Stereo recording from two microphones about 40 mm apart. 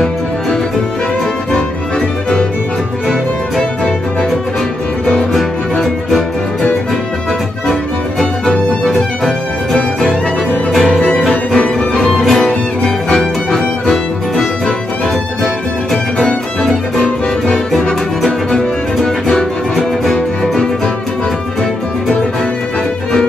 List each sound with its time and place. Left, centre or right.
5.3 s music: centre
8.8 s music: centre
11.5 s music: centre
12.2 s music: centre
17.0 s music: centre